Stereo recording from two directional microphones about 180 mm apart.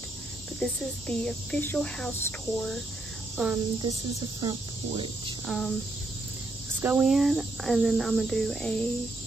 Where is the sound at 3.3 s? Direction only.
5° right (ahead or behind).